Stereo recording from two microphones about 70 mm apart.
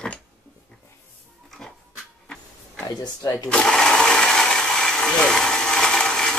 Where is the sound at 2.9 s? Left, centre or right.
Left.